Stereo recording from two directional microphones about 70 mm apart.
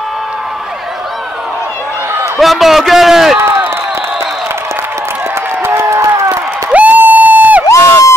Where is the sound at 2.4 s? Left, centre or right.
Centre.